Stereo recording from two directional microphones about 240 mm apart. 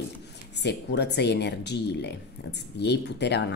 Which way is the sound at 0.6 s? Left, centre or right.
Left.